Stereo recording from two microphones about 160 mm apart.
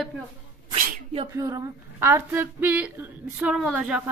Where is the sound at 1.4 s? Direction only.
15° right (ahead or behind).